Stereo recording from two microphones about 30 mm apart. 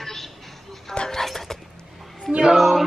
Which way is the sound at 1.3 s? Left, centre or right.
Centre.